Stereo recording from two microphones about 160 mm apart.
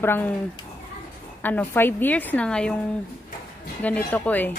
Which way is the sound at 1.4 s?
10° left (ahead or behind).